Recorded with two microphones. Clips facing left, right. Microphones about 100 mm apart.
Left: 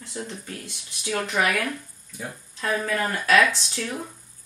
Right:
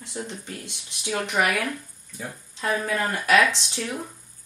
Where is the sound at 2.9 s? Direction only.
20° right (ahead or behind).